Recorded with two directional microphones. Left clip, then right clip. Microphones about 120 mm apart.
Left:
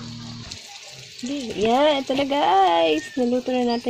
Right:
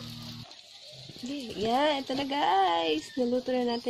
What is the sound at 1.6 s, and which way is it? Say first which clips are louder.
Speech: left 8 dB; 35° left (ahead or behind).